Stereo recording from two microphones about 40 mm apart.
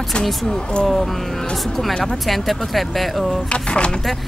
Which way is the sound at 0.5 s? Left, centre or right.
Left.